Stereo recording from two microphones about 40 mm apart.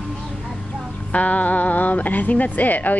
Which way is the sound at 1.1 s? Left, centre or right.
Left.